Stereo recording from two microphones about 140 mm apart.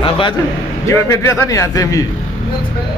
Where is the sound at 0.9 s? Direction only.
20° left (ahead or behind).